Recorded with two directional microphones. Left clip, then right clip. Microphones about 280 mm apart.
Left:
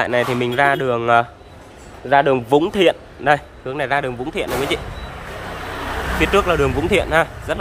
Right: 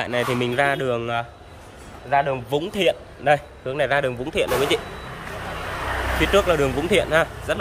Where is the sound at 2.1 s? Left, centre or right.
Left.